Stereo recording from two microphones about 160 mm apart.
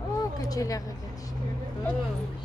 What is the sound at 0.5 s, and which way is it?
Speech, 20° left (ahead or behind).